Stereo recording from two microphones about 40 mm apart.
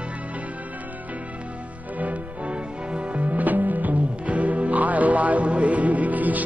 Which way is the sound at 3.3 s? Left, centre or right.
Right.